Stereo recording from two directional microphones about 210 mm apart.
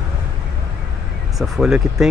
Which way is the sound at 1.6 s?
Centre (ahead or behind).